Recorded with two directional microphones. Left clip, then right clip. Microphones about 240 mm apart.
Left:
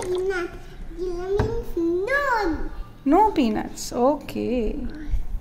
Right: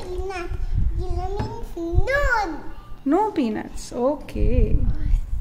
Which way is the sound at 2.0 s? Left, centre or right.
Right.